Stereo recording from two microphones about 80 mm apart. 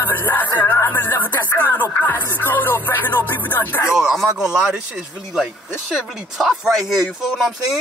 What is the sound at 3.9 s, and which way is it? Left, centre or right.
Speech, centre.